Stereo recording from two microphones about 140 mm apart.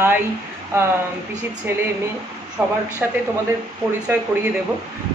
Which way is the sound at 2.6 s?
15° right (ahead or behind).